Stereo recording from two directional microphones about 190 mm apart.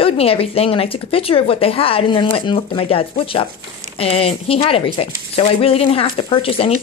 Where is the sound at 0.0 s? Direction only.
30° left (ahead or behind).